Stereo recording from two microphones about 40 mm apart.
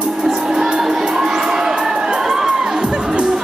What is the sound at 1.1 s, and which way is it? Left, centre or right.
Crowd, centre.